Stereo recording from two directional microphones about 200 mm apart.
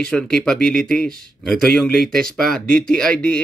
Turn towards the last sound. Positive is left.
turn(degrees=5)  # may be behind; listen again after turning